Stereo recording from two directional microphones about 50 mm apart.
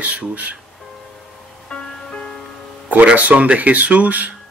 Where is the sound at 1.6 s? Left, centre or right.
Centre.